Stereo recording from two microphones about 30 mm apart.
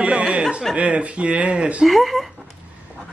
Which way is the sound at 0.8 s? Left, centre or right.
Right.